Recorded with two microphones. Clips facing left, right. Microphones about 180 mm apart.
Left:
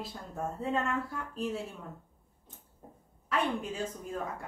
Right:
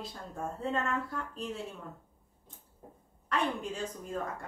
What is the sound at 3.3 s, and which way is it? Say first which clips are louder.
Speech: left 1 dB; 5° left (ahead or behind).